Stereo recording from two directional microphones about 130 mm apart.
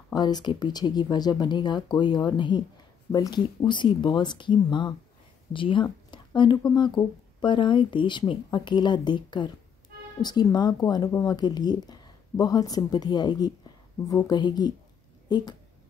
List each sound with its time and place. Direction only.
0.1 s speech: 30° left (ahead or behind)
6.0 s a sound: 35° left (ahead or behind)
6.7 s speech: 35° left (ahead or behind)
11.1 s speech: 20° left (ahead or behind)
11.3 s speech: 30° left (ahead or behind)